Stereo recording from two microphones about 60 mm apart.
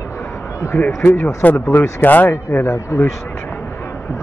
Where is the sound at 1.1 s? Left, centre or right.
Left.